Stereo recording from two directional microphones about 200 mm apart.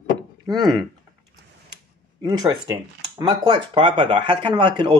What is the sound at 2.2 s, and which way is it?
Speech, 20° right (ahead or behind).